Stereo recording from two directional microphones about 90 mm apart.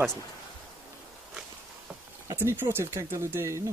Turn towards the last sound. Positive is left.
turn(degrees=-30)  # may be behind; listen again after turning